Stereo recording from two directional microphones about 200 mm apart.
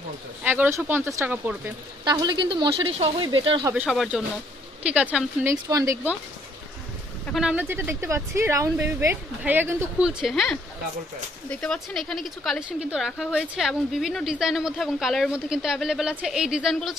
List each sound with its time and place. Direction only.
0.4 s speech: 10° right (ahead or behind)
2.0 s speech: 20° right (ahead or behind)
3.8 s a woman's voice: centre (ahead or behind)
5.7 s speech: 15° right (ahead or behind)
7.3 s a woman's voice: 5° right (ahead or behind)